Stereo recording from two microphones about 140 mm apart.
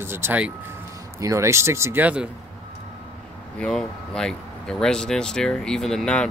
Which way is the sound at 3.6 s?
5° left (ahead or behind).